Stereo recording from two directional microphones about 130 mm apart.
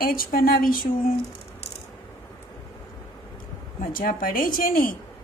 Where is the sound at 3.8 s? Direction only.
90° left.